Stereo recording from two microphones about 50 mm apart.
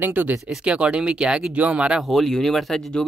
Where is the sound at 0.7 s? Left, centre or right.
Right.